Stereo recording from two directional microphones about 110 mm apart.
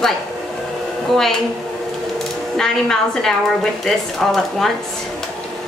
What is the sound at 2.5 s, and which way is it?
Speech, 5° left (ahead or behind).